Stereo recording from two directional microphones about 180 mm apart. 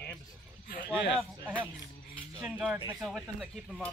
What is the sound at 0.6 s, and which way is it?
Speech, 55° left (ahead or behind).